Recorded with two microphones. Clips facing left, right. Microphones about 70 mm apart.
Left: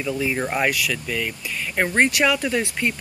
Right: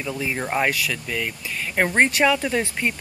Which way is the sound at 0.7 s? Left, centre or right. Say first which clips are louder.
Left 1 dB; right.